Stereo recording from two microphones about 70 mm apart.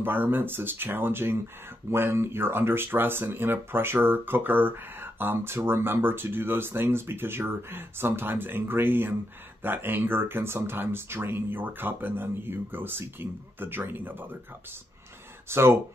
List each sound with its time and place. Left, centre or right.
0.0 s speech: right
15.5 s speech: right